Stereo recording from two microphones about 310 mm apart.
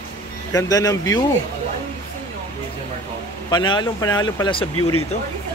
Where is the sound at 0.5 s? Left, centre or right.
Centre.